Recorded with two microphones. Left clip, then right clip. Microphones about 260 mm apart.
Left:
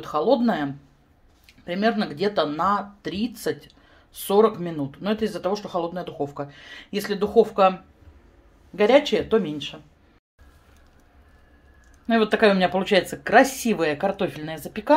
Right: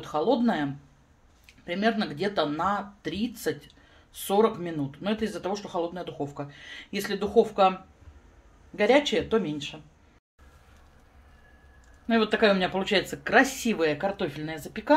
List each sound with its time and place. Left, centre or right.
0.0 s speech: centre
9.1 s speech: centre
12.1 s speech: centre